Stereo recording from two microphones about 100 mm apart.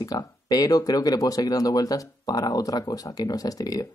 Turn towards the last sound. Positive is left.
turn(degrees=40)  # may be behind; listen again after turning